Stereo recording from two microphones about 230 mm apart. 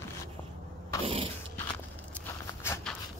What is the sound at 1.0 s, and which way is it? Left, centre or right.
Mechanisms, right.